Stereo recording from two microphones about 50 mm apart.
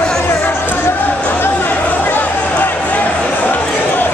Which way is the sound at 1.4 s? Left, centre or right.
Left.